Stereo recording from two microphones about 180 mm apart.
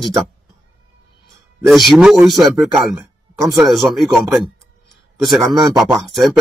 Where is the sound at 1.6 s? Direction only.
Centre (ahead or behind).